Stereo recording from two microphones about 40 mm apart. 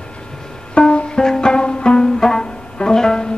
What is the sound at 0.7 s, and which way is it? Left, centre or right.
Music, left.